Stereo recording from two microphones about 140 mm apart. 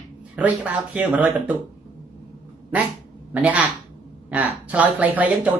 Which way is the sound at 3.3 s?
10° right (ahead or behind).